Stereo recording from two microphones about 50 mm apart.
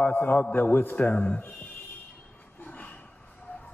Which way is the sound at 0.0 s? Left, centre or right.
Left.